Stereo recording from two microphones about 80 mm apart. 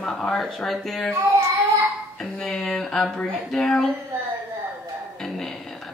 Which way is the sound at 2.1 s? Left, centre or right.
Centre.